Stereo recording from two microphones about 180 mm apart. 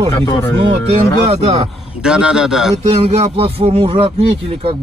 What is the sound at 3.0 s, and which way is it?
A man's voice, 35° right (ahead or behind).